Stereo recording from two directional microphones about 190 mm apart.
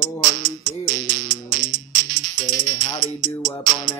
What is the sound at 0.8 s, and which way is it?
Music, 40° right (ahead or behind).